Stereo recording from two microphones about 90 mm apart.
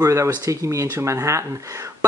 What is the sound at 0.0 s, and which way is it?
Speech, 35° right (ahead or behind).